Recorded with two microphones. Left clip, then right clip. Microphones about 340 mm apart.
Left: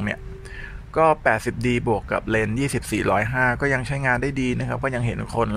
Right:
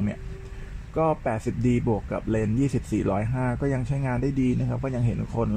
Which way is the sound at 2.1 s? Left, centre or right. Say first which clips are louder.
Left 4 dB; left.